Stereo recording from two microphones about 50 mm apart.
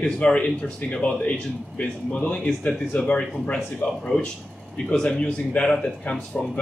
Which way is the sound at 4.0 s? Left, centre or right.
Centre.